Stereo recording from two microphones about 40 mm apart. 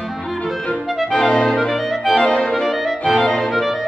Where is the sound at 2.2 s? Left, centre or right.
Left.